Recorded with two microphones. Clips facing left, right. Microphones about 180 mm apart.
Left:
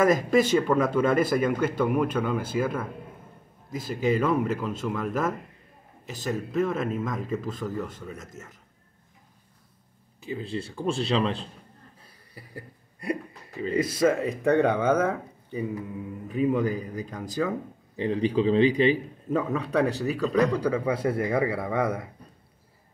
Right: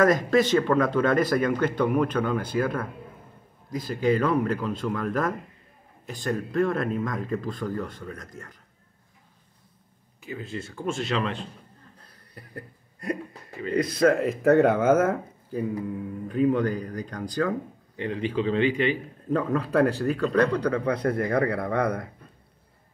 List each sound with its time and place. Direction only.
0.0 s speech: 10° left (ahead or behind)
10.2 s speech: 30° left (ahead or behind)
12.0 s a sound: 5° left (ahead or behind)
13.7 s speech: 5° left (ahead or behind)
16.3 s speech: 5° left (ahead or behind)
18.0 s speech: 35° left (ahead or behind)
19.3 s speech: centre (ahead or behind)